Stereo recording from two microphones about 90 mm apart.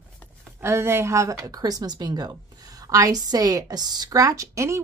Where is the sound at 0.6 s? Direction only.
25° right (ahead or behind).